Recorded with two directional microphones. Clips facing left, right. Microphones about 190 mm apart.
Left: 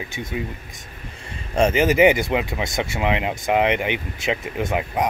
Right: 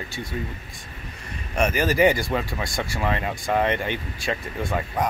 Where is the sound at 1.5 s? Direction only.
25° left (ahead or behind).